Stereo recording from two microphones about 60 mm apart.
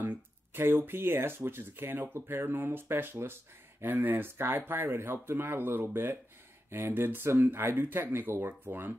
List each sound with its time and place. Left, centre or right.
0.0 s speech: right